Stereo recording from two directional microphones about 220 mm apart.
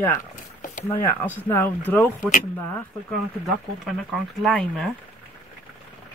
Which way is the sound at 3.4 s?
Centre (ahead or behind).